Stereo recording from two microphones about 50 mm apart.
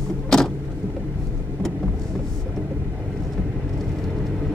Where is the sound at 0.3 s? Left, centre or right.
Centre.